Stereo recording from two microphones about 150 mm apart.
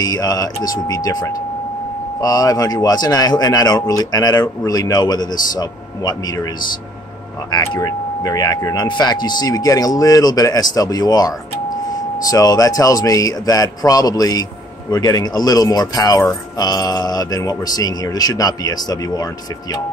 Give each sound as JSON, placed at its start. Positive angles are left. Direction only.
{"t": 0.0, "sound": "speech", "side_deg": 25}
{"t": 7.5, "sound": "speech", "side_deg": 25}